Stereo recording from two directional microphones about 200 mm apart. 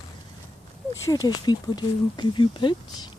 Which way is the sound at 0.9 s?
20° left (ahead or behind).